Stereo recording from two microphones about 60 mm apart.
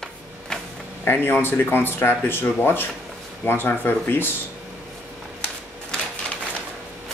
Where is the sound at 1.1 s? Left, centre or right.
Left.